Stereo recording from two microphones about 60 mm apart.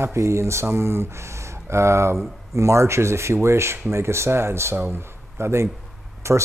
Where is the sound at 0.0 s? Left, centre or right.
Right.